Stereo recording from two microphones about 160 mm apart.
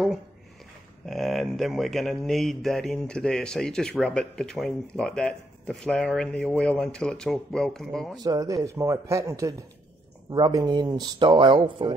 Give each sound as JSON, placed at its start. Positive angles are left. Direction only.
{"t": 1.0, "sound": "speech", "side_deg": 0}
{"t": 8.2, "sound": "speech", "side_deg": -20}